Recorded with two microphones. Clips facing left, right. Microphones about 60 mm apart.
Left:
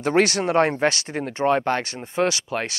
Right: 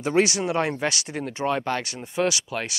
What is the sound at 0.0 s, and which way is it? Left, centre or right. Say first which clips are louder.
Speech: left 2 dB; left.